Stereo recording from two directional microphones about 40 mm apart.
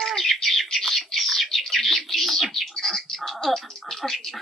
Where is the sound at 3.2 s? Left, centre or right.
Centre.